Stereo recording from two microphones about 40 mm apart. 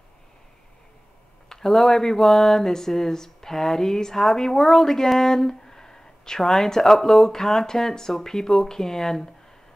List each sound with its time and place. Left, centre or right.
1.5 s speech: centre